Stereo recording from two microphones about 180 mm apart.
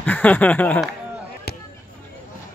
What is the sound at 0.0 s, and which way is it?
Speech, 10° left (ahead or behind).